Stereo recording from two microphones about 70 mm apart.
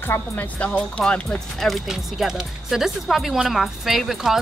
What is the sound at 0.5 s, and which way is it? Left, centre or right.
Speech, centre.